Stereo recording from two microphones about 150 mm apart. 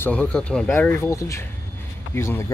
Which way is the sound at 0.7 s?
15° left (ahead or behind).